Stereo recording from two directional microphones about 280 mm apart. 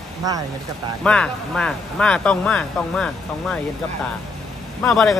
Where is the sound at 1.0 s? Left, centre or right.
Centre.